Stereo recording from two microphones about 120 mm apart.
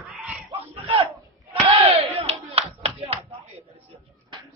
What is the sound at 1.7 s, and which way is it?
Battle cry, 50° right (ahead or behind).